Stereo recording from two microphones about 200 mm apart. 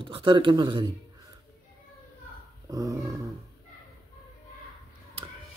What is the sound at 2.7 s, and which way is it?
Dog, 15° right (ahead or behind).